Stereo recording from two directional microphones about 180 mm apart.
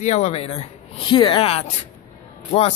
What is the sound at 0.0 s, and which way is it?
Speech, 40° left (ahead or behind).